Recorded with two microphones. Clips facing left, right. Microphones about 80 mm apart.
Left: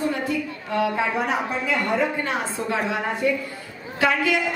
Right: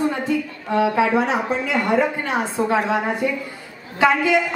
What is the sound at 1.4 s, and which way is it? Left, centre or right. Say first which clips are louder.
A woman's voice: right 3 dB; centre.